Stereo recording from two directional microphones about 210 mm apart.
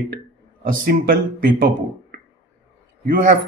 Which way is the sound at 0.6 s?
45° right (ahead or behind).